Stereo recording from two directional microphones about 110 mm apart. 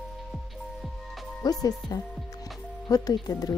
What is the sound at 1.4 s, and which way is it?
Speech, 35° left (ahead or behind).